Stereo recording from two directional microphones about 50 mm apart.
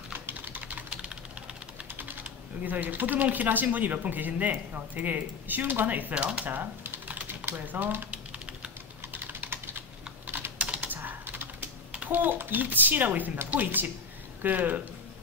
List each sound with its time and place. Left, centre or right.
0.1 s typing: right
1.9 s typing: right
2.2 s speech: right
6.1 s speech: right
6.4 s speech: right
7.2 s typing: right
7.6 s speech: right
8.1 s typing: right
9.1 s typing: right
10.6 s typing: right
10.9 s typing: right
12.1 s speech: right